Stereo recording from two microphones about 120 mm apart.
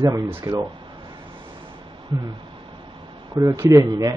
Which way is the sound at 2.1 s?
40° right (ahead or behind).